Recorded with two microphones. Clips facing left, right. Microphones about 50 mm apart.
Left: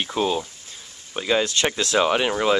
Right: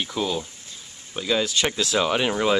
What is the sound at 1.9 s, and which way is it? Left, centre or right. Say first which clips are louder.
Speech: left 3 dB; centre.